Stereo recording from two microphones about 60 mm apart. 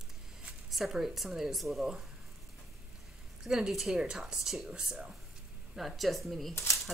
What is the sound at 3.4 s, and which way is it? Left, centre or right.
A woman's voice, centre.